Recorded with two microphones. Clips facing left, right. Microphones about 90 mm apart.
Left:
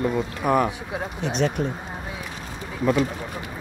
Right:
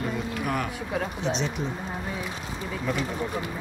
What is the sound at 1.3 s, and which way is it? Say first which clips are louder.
Speech: left 8 dB; 50° left (ahead or behind).